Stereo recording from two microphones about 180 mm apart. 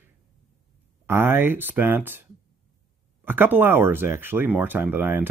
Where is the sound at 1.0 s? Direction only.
10° right (ahead or behind).